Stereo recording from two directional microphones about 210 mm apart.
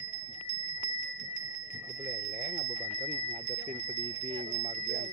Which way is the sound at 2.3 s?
40° right (ahead or behind).